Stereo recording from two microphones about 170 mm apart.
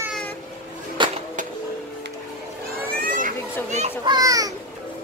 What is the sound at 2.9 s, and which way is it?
Children playing, 50° right (ahead or behind).